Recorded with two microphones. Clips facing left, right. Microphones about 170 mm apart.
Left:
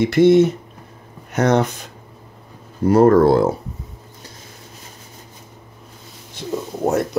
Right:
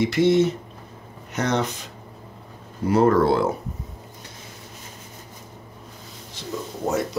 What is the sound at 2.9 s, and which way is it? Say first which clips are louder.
Speech: left 6 dB; 45° left (ahead or behind).